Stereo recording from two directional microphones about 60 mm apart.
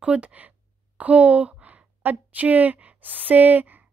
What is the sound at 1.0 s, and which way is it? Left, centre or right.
A woman's voice, right.